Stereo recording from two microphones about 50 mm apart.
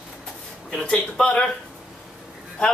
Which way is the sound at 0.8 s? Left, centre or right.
Left.